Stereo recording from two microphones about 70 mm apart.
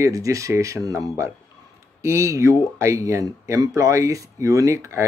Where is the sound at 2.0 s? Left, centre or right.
Right.